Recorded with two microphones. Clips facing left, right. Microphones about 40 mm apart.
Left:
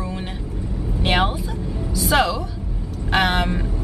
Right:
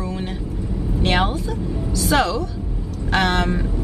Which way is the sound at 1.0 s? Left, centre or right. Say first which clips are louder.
Even; centre.